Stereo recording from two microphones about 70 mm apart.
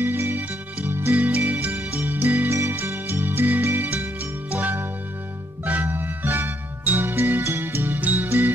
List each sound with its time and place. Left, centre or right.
0.0 s music: right